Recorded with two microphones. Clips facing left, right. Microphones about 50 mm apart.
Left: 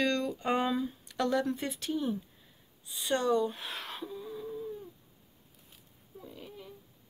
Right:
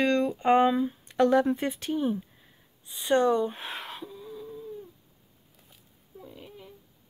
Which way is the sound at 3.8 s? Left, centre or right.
Centre.